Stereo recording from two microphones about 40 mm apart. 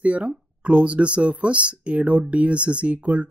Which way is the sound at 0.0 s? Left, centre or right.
Right.